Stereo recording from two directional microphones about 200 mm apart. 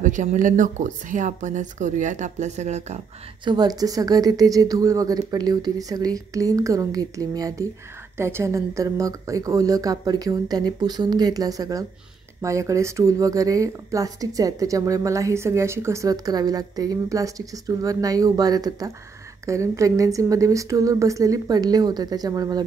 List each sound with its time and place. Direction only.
0.0 s speech: 40° right (ahead or behind)
3.4 s speech: 20° right (ahead or behind)